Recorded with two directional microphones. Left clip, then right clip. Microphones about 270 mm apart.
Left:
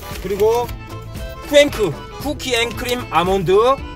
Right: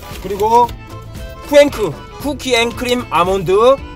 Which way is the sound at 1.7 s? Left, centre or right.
Centre.